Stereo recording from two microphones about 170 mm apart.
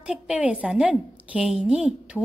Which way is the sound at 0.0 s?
5° right (ahead or behind).